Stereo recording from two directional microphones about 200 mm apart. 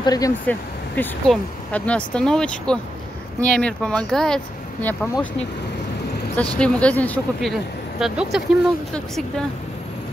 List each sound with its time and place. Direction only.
0.0 s speech: 20° left (ahead or behind)
0.5 s speech: 5° left (ahead or behind)
6.6 s speech: 5° left (ahead or behind)